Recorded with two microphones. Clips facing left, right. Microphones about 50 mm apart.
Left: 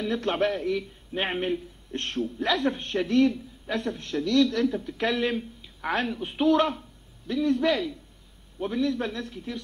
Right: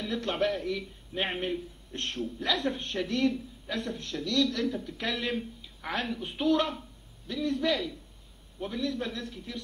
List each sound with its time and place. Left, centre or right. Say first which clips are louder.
0.0 s a man's voice: left 4 dB; left
5.6 s a sound: left 7 dB; left
6.2 s a man's voice: left 5 dB; left
8.5 s a man's voice: left 6 dB; left